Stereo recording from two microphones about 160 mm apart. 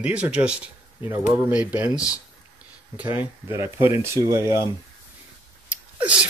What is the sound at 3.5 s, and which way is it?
Speech, 15° right (ahead or behind).